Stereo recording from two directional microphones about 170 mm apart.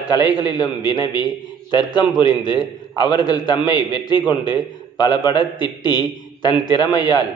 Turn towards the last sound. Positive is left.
turn(degrees=25)  # may be behind; listen again after turning